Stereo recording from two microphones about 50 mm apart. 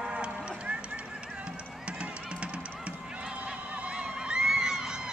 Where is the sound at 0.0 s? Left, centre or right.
Right.